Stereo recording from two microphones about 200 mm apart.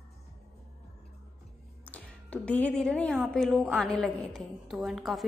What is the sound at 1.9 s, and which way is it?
A woman's voice, 5° left (ahead or behind).